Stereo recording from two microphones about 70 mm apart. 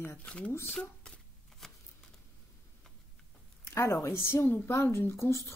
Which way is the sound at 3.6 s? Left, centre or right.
Left.